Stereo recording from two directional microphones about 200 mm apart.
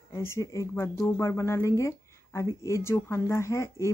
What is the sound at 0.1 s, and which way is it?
Speech, 15° left (ahead or behind).